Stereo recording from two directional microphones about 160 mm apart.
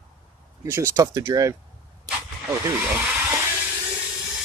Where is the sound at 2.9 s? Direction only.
10° right (ahead or behind).